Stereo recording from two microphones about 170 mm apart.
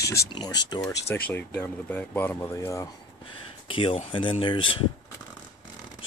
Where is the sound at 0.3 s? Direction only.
25° left (ahead or behind).